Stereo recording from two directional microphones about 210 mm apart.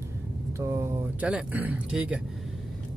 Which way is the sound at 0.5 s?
15° right (ahead or behind).